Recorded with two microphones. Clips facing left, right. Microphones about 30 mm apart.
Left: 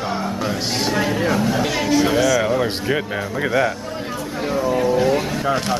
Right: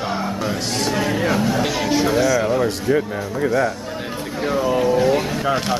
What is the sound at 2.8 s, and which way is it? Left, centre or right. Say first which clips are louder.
Speech: right 2 dB; left.